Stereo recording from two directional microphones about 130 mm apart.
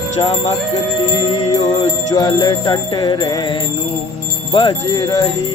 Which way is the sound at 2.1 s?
35° left (ahead or behind).